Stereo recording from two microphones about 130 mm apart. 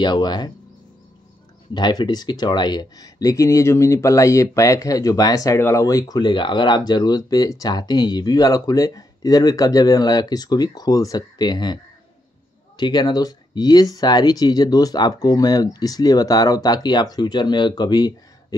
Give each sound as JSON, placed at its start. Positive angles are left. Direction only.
{"t": 0.0, "sound": "speech", "side_deg": 35}
{"t": 1.7, "sound": "speech", "side_deg": 35}